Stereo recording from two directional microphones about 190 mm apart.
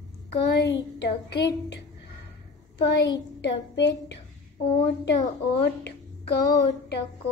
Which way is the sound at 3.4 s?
65° left (ahead or behind).